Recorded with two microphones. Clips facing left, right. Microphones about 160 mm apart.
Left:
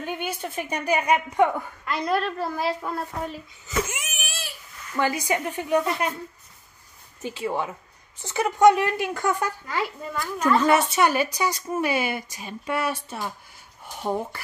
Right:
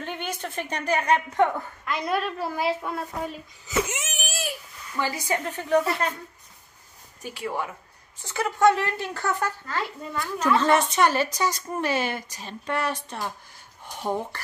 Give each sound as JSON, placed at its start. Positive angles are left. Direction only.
{"t": 0.0, "sound": "a woman's voice", "side_deg": 10}
{"t": 1.9, "sound": "a woman's voice", "side_deg": 0}
{"t": 3.8, "sound": "a sound", "side_deg": -20}
{"t": 4.9, "sound": "a woman's voice", "side_deg": 20}
{"t": 7.2, "sound": "a woman's voice", "side_deg": 25}